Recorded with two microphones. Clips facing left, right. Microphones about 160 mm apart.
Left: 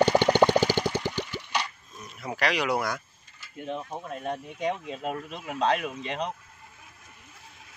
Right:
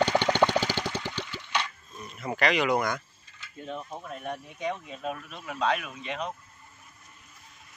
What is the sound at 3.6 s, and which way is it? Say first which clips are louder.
Speech: left 3 dB; 20° left (ahead or behind).